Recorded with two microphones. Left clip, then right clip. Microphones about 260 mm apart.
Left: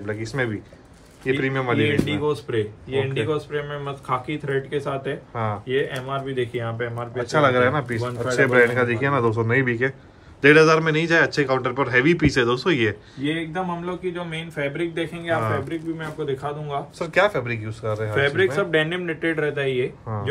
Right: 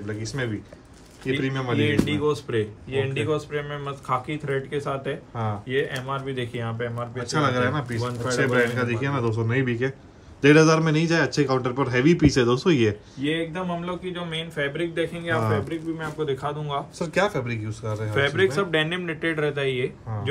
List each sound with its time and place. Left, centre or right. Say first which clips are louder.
0.0 s speech: left 4 dB; centre
5.3 s speech: left 4 dB; centre
5.7 s speech: even; centre
13.5 s speech: left 2 dB; centre